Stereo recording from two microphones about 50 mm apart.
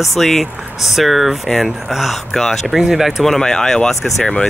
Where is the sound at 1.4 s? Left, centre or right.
Centre.